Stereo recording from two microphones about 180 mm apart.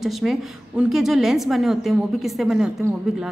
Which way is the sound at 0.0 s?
Centre (ahead or behind).